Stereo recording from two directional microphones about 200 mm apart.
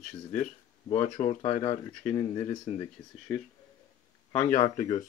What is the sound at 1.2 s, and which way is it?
Speech, 30° left (ahead or behind).